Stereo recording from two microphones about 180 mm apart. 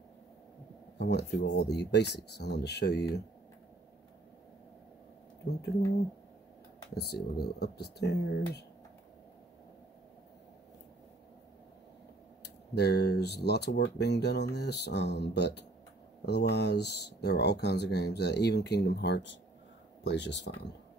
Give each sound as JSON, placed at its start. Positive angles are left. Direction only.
{"t": 0.9, "sound": "speech", "side_deg": 70}
{"t": 5.4, "sound": "speech", "side_deg": 90}
{"t": 7.3, "sound": "speech", "side_deg": 65}
{"t": 12.7, "sound": "speech", "side_deg": 65}